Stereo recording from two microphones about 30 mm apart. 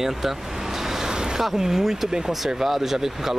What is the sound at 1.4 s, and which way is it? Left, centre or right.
Speech, centre.